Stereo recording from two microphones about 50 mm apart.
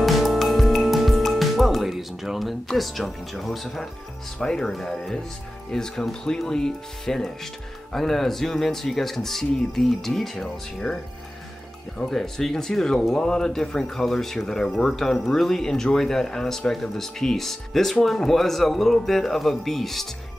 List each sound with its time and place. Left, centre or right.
0.0 s music: centre
2.7 s speech: centre
4.4 s speech: centre
10.8 s speech: left
12.0 s speech: centre